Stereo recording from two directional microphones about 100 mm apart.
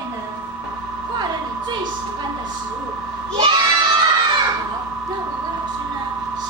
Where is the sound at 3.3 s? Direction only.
50° right (ahead or behind).